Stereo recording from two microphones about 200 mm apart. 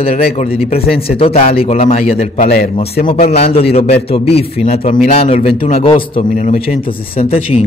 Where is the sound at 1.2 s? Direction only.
30° left (ahead or behind).